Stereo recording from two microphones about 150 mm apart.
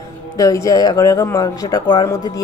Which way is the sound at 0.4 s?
20° left (ahead or behind).